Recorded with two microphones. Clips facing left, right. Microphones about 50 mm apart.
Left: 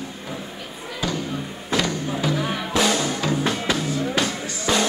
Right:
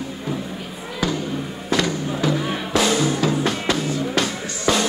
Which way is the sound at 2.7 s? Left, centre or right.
Centre.